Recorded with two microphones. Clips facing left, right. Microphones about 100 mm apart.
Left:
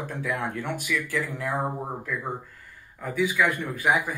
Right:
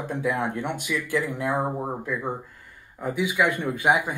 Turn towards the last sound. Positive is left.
turn(degrees=-25)  # may be behind; listen again after turning